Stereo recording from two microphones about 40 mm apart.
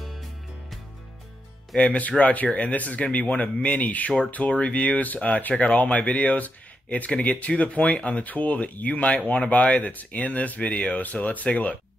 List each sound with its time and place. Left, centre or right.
1.8 s speech: left
11.0 s speech: left